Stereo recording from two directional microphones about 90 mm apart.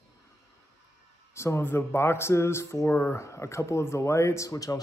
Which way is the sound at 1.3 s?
30° left (ahead or behind).